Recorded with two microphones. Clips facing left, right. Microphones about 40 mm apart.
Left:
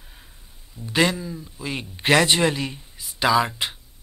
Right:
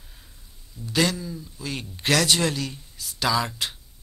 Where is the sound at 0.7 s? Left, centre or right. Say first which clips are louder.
Left 3 dB; left.